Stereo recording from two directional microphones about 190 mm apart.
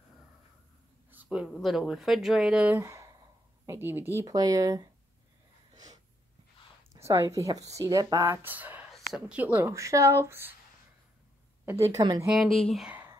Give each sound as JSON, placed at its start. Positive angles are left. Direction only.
{"t": 1.1, "sound": "speech", "side_deg": -5}
{"t": 7.1, "sound": "speech", "side_deg": -15}
{"t": 11.8, "sound": "speech", "side_deg": -20}
{"t": 12.5, "sound": "speech", "side_deg": 0}